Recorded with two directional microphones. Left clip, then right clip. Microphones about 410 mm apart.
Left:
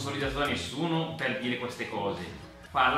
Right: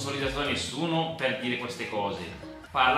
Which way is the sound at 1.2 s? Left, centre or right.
Centre.